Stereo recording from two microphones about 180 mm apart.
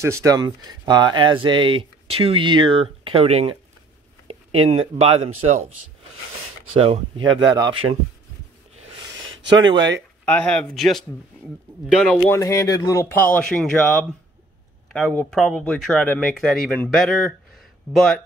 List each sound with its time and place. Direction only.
0.0 s a man's voice: 15° right (ahead or behind); by 5.7 s 35° right (ahead or behind)
6.7 s a man's voice: 35° right (ahead or behind)
9.6 s speech: 25° right (ahead or behind)
10.2 s speech: 5° left (ahead or behind)
12.2 s speech: 15° left (ahead or behind)